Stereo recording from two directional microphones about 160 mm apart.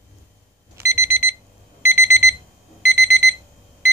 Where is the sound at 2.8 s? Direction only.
85° right.